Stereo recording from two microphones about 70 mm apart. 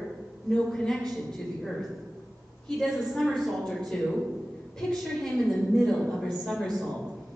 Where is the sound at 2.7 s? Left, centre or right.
Centre.